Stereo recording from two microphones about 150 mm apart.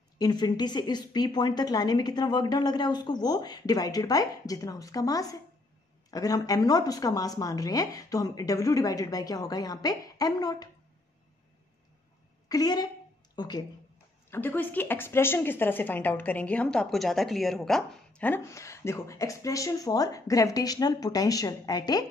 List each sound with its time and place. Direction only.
0.2 s a woman's voice: 30° left (ahead or behind)
12.4 s a woman's voice: 25° left (ahead or behind)
14.3 s a woman's voice: 15° left (ahead or behind)